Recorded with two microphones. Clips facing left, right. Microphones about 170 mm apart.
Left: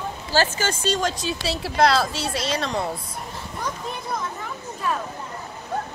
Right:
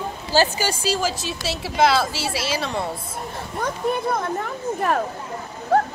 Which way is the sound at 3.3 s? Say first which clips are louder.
Right 4 dB; 55° right (ahead or behind).